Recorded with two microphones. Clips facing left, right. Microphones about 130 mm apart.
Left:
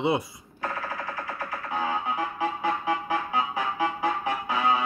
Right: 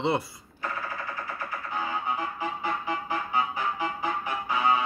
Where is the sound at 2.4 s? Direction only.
80° left.